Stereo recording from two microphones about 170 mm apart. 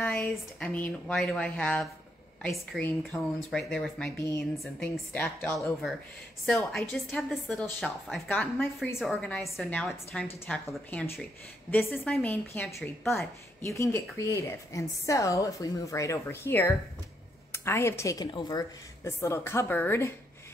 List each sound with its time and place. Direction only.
0.0 s a woman's voice: 5° left (ahead or behind)
6.4 s a woman's voice: centre (ahead or behind)
13.6 s speech: 15° left (ahead or behind)